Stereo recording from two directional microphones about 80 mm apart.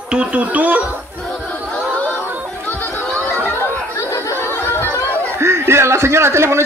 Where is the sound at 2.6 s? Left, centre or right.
Left.